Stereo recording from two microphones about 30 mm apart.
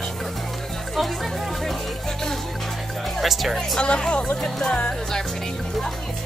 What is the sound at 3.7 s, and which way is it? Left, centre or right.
Speech, left.